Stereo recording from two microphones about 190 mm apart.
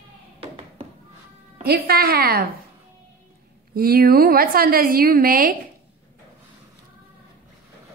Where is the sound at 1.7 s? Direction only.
50° right (ahead or behind).